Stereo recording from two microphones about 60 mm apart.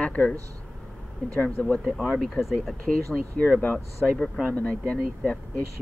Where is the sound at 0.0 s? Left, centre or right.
Left.